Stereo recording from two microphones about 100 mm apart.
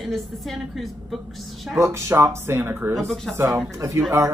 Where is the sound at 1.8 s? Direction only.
30° right (ahead or behind).